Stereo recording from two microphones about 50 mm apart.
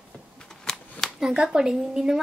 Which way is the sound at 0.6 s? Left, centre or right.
Centre.